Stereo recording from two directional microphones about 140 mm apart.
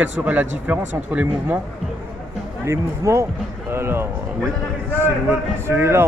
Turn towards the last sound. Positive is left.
turn(degrees=-15)  # may be behind; listen again after turning